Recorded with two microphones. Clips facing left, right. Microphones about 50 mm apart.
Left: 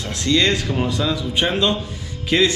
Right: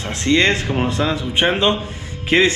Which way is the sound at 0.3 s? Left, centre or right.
Right.